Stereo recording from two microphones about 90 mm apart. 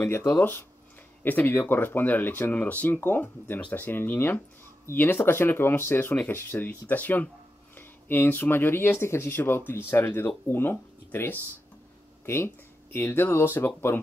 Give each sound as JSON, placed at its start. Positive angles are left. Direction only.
{"t": 0.4, "sound": "speech", "side_deg": 20}
{"t": 12.9, "sound": "speech", "side_deg": 25}